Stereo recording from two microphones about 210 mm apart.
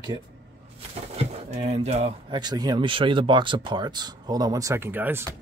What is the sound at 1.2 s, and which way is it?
Speech, 30° right (ahead or behind).